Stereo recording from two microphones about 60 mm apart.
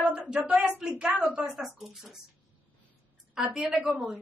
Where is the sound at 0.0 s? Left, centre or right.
Right.